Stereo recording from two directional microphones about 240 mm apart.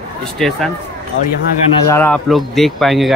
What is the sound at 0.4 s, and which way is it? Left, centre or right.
Speech, centre.